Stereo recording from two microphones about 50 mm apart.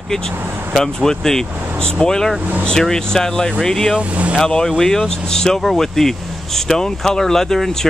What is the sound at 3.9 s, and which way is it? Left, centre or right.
Speech, right.